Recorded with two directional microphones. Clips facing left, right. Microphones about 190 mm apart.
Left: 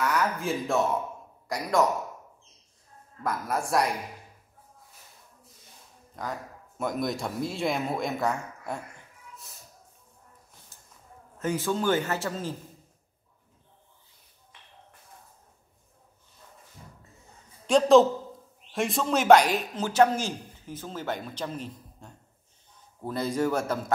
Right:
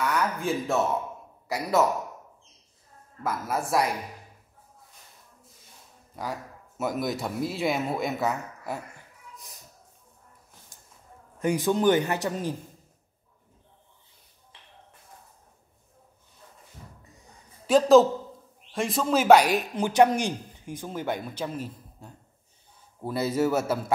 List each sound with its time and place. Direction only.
0.0 s a woman's voice: centre (ahead or behind)
3.3 s a woman's voice: centre (ahead or behind)
6.2 s speech: 10° right (ahead or behind)
10.7 s a sound: 15° right (ahead or behind)
11.3 s a man's voice: 15° right (ahead or behind)
17.6 s a woman's voice: 5° right (ahead or behind)